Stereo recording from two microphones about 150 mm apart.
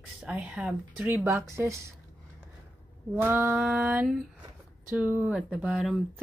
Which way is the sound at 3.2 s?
15° right (ahead or behind).